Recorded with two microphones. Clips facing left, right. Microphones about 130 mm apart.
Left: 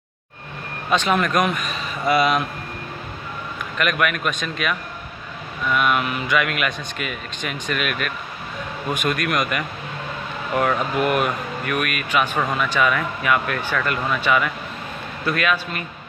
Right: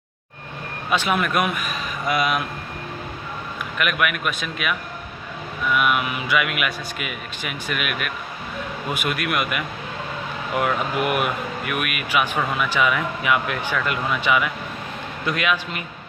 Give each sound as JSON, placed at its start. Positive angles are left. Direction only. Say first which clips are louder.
{"t": 0.8, "sound": "speech", "louder": "left 2 dB", "side_deg": -10}
{"t": 3.7, "sound": "speech", "louder": "left 2 dB", "side_deg": -10}